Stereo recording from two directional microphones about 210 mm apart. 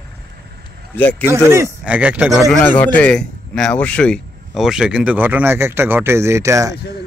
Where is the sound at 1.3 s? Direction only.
10° right (ahead or behind).